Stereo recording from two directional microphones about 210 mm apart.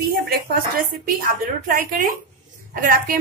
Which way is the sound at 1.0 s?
40° right (ahead or behind).